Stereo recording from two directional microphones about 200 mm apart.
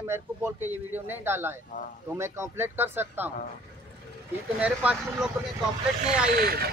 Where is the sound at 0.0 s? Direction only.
10° right (ahead or behind).